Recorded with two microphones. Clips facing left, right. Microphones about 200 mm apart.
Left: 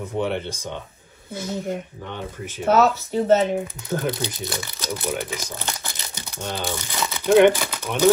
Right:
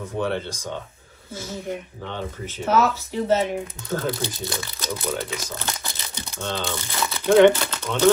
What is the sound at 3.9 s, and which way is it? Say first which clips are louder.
Speech: even; 15° left (ahead or behind).